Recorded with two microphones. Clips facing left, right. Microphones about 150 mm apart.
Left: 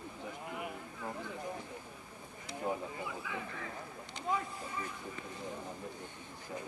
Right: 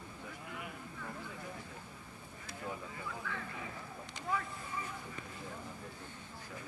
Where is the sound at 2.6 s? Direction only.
25° left (ahead or behind).